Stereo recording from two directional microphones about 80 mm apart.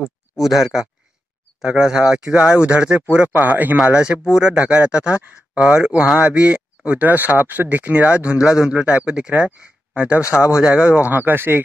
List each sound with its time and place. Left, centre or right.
0.4 s speech: centre; by 3.7 s right
3.7 s speech: centre; by 11.6 s right